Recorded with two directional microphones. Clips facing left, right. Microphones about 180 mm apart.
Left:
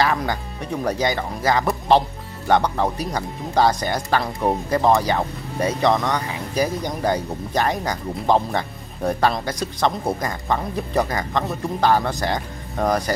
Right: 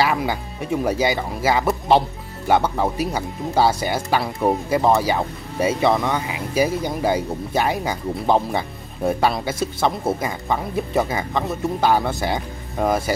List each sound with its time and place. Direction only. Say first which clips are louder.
0.0 s speech: right 1 dB; 5° right (ahead or behind)